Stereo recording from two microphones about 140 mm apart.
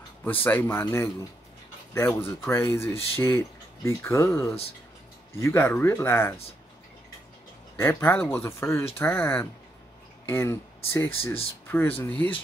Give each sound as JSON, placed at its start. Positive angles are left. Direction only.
{"t": 0.2, "sound": "speech", "side_deg": 15}
{"t": 7.7, "sound": "speech", "side_deg": 15}